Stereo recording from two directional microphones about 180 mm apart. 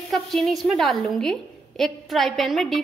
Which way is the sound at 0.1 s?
Centre (ahead or behind).